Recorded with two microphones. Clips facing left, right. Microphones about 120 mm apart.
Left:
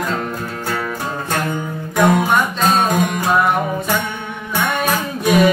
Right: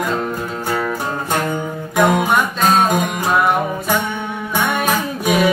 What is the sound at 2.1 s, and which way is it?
Music, 15° right (ahead or behind).